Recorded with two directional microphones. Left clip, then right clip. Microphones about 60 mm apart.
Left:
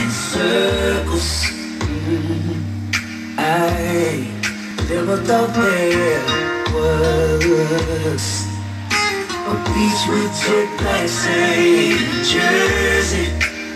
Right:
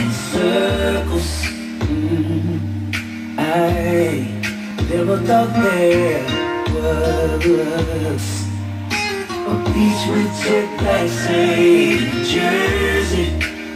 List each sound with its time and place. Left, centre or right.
0.3 s music: right
2.9 s music: right
9.8 s music: right